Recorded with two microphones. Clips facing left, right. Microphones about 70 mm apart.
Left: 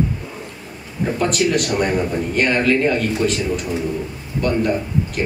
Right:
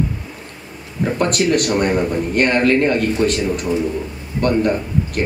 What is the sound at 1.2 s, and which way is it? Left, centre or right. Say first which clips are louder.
Speech: right 2 dB; right.